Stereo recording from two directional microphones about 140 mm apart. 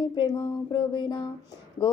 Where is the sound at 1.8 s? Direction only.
20° left (ahead or behind).